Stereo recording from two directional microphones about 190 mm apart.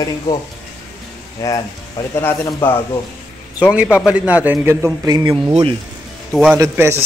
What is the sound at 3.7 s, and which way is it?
A man's voice, 5° right (ahead or behind).